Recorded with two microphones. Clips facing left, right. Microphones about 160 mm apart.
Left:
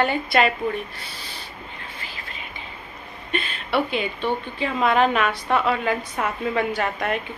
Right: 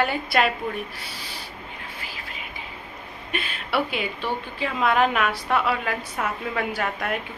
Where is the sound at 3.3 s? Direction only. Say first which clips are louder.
Left 3 dB; 5° right (ahead or behind).